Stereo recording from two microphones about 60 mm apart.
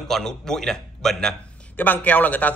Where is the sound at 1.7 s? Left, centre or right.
Left.